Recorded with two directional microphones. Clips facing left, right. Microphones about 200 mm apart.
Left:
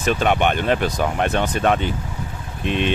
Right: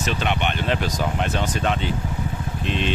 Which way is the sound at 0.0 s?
50° left (ahead or behind).